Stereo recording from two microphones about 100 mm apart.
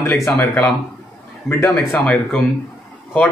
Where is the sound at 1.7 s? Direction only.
15° left (ahead or behind).